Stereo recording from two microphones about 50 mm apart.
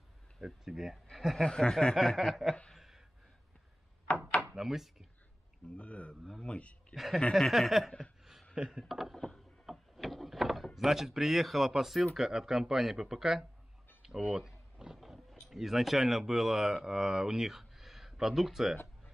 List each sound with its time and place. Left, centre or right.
0.5 s a sound: centre
1.4 s speech: centre
2.1 s a sound: centre
4.6 s speech: centre
5.8 s speech: left
7.3 s a sound: centre
8.5 s speech: centre
8.8 s a sound: centre
9.7 s door: centre
12.2 s speech: centre
14.0 s power windows: centre
15.0 s speech: centre